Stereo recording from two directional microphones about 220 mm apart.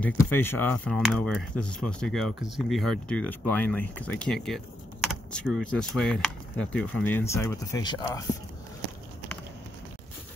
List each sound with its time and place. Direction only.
0.0 s speech: 10° left (ahead or behind)